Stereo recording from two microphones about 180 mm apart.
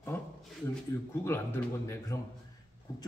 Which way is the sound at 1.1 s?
15° left (ahead or behind).